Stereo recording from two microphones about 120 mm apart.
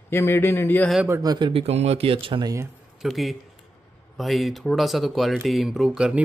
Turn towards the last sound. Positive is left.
turn(degrees=-5)  # may be behind; listen again after turning